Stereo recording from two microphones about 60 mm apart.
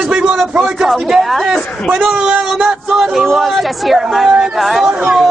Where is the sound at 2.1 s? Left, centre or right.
Centre.